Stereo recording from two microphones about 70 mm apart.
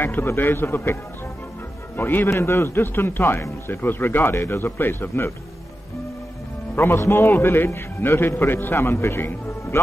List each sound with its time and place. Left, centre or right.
0.0 s a man's voice: left
2.0 s a man's voice: left
6.7 s a man's voice: left